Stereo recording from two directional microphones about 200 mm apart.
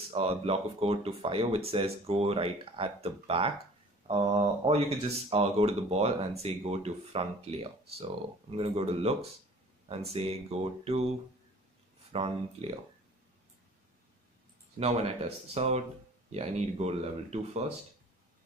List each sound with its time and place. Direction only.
0.1 s speech: 30° right (ahead or behind)
4.6 s speech: 30° right (ahead or behind)
12.1 s speech: 30° right (ahead or behind)
14.8 s speech: 30° right (ahead or behind)